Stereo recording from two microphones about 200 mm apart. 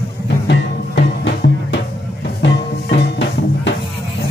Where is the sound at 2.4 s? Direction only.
60° left (ahead or behind).